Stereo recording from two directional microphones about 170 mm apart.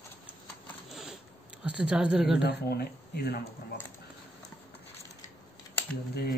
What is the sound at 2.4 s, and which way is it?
Speech, 70° left (ahead or behind).